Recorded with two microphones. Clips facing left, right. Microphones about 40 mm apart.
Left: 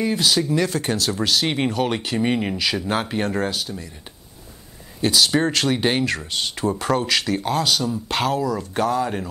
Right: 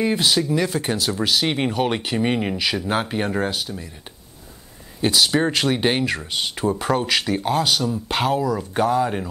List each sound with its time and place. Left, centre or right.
0.0 s speech: centre
0.5 s speech: centre
5.0 s speech: centre